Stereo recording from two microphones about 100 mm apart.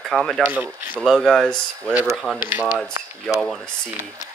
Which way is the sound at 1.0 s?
Centre (ahead or behind).